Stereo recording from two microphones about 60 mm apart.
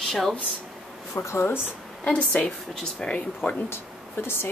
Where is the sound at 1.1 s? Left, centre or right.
Left.